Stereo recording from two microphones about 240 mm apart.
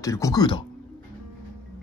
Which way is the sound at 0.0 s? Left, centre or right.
Centre.